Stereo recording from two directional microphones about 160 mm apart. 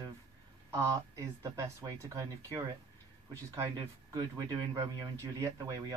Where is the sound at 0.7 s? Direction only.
20° right (ahead or behind).